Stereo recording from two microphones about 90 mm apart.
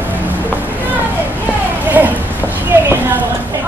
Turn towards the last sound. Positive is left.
turn(degrees=-30)  # may be behind; listen again after turning